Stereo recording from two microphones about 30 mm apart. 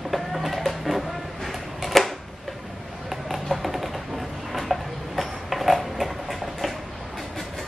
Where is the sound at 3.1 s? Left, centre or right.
Centre.